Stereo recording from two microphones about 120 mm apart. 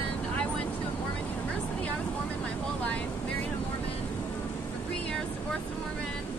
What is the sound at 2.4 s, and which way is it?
Vehicle, 10° left (ahead or behind).